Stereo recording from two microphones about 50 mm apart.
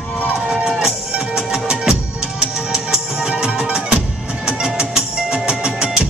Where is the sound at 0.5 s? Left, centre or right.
Centre.